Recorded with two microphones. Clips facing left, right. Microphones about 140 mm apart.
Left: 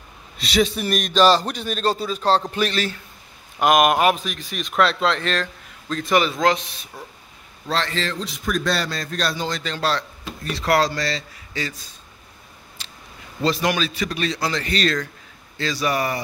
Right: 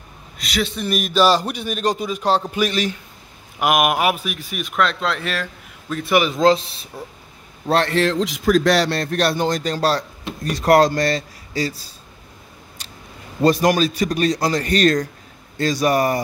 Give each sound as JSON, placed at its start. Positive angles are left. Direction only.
{"t": 0.4, "sound": "a man's voice", "side_deg": 25}
{"t": 0.7, "sound": "speech", "side_deg": 5}
{"t": 0.9, "sound": "a man's voice", "side_deg": -5}
{"t": 6.4, "sound": "speech", "side_deg": -30}
{"t": 7.6, "sound": "a man's voice", "side_deg": -55}
{"t": 12.8, "sound": "scissors", "side_deg": -45}
{"t": 13.4, "sound": "a man's voice", "side_deg": -45}